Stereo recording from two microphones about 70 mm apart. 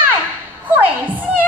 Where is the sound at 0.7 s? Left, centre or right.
Right.